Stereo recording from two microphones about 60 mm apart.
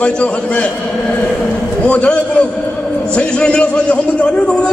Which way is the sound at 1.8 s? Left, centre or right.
Left.